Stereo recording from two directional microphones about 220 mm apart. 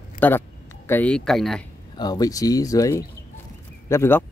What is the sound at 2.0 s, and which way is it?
Speech, 15° left (ahead or behind).